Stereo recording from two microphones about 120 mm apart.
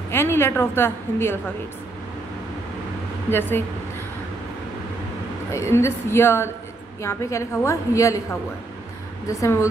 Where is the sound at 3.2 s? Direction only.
20° left (ahead or behind).